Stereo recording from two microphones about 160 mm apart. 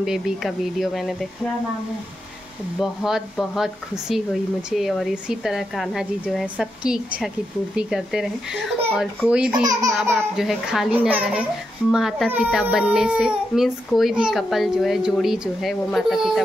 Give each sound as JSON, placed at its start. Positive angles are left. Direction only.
{"t": 0.0, "sound": "a child's voice", "side_deg": 0}
{"t": 2.8, "sound": "a child's voice", "side_deg": 0}
{"t": 9.7, "sound": "laughter", "side_deg": -20}
{"t": 10.3, "sound": "a child's voice", "side_deg": 0}